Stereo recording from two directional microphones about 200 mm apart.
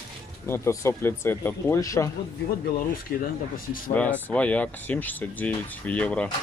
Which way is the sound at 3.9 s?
5° left (ahead or behind).